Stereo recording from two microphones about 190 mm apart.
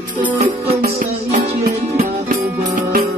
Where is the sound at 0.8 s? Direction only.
50° right (ahead or behind).